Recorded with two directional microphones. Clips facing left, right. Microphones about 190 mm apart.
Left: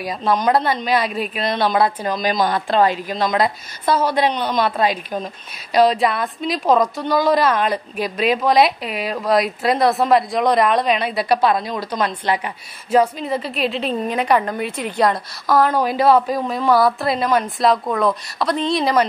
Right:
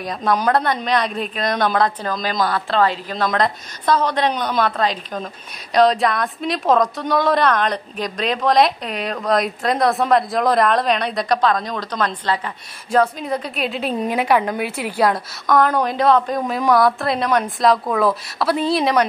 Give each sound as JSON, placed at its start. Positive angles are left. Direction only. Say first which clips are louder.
{"t": 0.0, "sound": "a woman's voice", "louder": "left 1 dB", "side_deg": 5}
{"t": 13.2, "sound": "a woman's voice", "louder": "left 2 dB", "side_deg": 0}
{"t": 15.4, "sound": "a woman's voice", "louder": "even", "side_deg": 5}